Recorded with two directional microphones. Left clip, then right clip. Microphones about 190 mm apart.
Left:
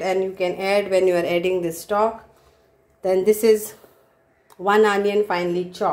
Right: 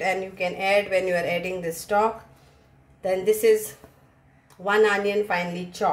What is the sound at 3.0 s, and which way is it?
Speech, 30° left (ahead or behind).